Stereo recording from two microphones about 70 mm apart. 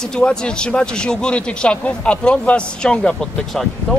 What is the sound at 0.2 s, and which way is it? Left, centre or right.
Speech, centre.